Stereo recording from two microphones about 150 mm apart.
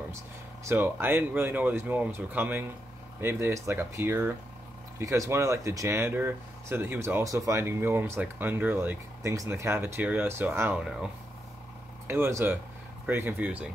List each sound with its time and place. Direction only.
0.7 s speech: 15° right (ahead or behind)
12.1 s speech: 15° right (ahead or behind)